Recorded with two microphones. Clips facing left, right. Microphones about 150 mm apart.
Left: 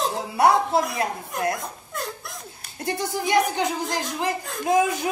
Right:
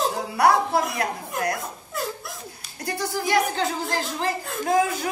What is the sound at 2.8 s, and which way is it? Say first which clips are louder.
Speech: left 1 dB; 20° left (ahead or behind).